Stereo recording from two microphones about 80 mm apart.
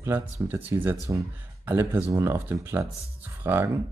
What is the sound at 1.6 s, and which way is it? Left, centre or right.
Speech, right.